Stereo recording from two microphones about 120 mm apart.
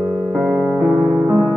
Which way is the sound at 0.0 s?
Centre (ahead or behind).